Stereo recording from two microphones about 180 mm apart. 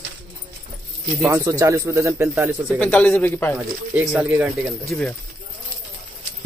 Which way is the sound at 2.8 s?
10° left (ahead or behind).